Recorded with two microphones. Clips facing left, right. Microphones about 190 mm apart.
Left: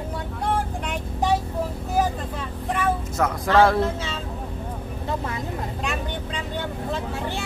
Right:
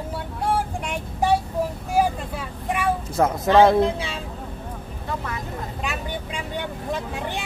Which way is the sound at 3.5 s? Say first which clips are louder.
Right 3 dB; 20° right (ahead or behind).